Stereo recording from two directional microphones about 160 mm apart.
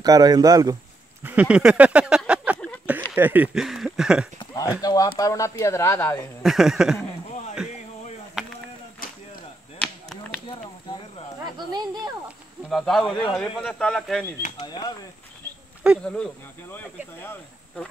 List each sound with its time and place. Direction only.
0.0 s speech: 25° right (ahead or behind)
1.2 s a sound: 10° right (ahead or behind)
3.2 s speech: 10° right (ahead or behind)
4.4 s speech: 25° left (ahead or behind)
6.4 s speech: centre (ahead or behind)
9.8 s chop: 5° left (ahead or behind)
11.5 s a sound: 25° right (ahead or behind)
12.6 s speech: centre (ahead or behind)
14.6 s speech: 25° left (ahead or behind)
15.8 s speech: 5° right (ahead or behind)
16.7 s speech: 10° left (ahead or behind)